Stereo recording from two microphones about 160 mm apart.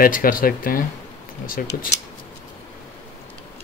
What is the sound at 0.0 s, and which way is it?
Speech, 60° left (ahead or behind).